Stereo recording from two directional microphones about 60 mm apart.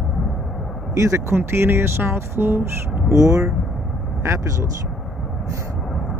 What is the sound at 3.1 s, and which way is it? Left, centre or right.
Speech, right.